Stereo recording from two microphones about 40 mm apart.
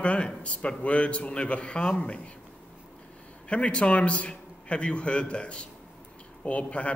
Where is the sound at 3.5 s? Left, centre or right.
Left.